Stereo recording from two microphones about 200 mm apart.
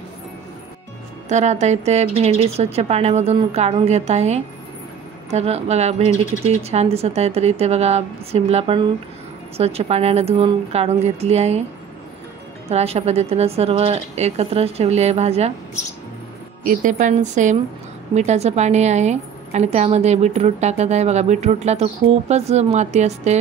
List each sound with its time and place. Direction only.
1.3 s a woman's voice: 35° right (ahead or behind)
12.6 s a woman's voice: 30° right (ahead or behind)
16.6 s a woman's voice: 40° right (ahead or behind)